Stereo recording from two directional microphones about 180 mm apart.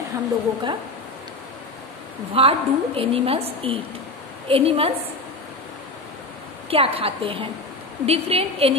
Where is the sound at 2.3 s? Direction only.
30° right (ahead or behind).